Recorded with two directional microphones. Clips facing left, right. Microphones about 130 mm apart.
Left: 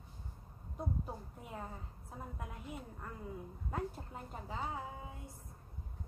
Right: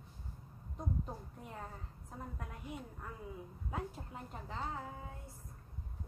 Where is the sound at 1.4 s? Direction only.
5° left (ahead or behind).